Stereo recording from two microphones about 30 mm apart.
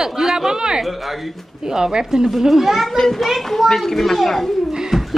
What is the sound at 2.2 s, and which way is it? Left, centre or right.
A child's voice, centre.